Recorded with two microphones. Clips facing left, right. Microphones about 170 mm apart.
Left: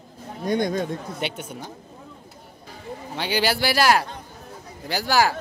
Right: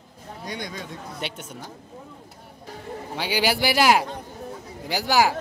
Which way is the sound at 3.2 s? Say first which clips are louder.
Even; 10° right (ahead or behind).